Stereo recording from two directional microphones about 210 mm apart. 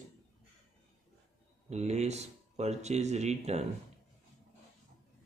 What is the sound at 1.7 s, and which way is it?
Speech, 30° right (ahead or behind).